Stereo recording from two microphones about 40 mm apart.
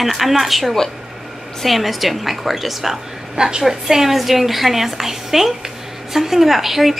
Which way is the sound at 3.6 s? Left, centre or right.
Centre.